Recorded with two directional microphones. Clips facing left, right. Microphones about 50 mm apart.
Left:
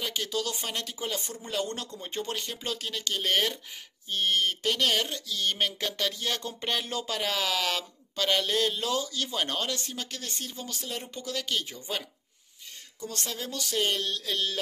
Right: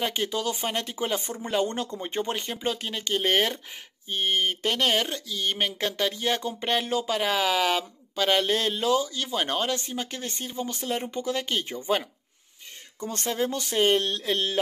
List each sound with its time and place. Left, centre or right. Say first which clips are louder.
0.0 s speech: right 4 dB; right